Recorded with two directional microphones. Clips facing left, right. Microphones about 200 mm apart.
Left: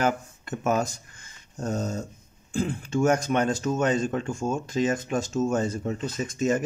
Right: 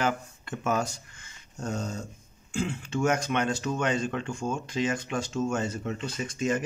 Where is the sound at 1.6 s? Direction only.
35° left (ahead or behind).